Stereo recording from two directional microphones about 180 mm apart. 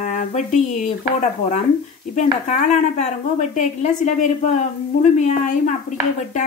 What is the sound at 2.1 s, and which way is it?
A woman's voice, 40° left (ahead or behind).